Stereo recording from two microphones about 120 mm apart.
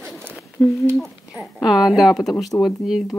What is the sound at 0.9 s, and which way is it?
Speech, 5° right (ahead or behind).